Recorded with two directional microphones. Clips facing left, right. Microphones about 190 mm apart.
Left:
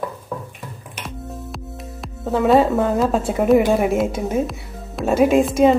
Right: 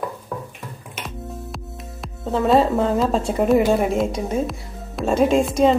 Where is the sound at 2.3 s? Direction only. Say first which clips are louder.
Left 2 dB; centre (ahead or behind).